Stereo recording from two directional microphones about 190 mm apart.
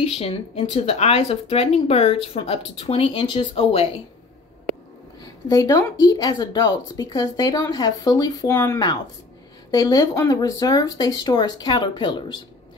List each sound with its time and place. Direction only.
0.1 s speech: 30° left (ahead or behind)
5.5 s speech: 20° left (ahead or behind)